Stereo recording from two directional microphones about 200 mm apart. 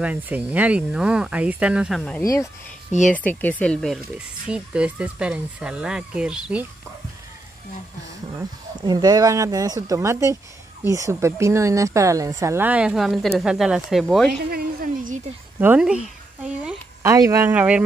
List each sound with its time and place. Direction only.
0.0 s speech: 5° right (ahead or behind)
8.3 s speech: 20° right (ahead or behind); by 14.4 s centre (ahead or behind)
14.4 s a sound: 50° right (ahead or behind)
15.6 s speech: 5° right (ahead or behind)